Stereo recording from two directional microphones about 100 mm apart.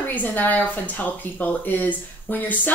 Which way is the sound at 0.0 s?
15° left (ahead or behind).